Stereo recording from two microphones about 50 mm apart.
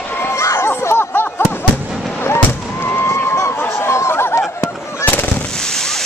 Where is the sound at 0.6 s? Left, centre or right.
Left.